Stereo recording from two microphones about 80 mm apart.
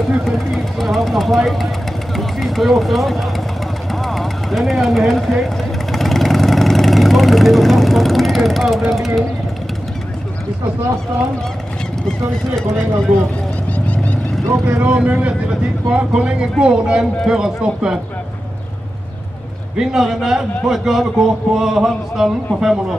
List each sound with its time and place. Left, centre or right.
0.3 s a man's voice: centre
3.9 s a sound: centre
5.9 s vehicle: centre
13.7 s vehicle: centre
14.5 s speech: centre
19.8 s a man's voice: centre